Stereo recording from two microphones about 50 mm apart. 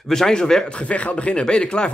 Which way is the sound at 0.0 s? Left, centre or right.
Centre.